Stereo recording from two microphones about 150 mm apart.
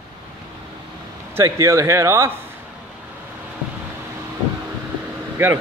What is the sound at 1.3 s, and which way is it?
Speech, 20° right (ahead or behind).